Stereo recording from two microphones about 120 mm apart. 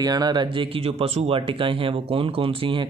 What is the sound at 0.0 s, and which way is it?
Speech, 35° right (ahead or behind).